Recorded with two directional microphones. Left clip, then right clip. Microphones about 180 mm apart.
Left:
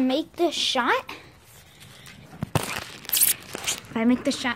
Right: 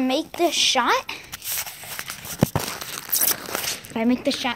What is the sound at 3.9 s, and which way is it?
Speech, 15° left (ahead or behind).